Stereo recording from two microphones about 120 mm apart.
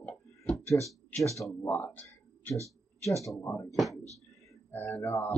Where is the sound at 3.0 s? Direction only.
25° left (ahead or behind).